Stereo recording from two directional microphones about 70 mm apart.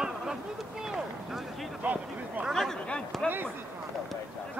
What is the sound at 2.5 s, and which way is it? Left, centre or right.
Speech, centre.